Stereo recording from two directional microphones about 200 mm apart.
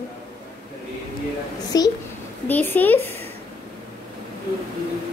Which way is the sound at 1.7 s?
20° left (ahead or behind).